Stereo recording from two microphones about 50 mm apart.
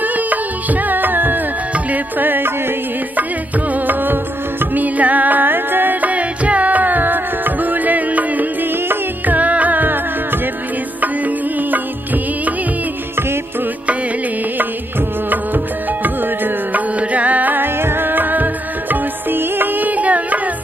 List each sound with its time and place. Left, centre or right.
0.0 s music: right
3.7 s music: right
15.2 s music: right
17.7 s music: right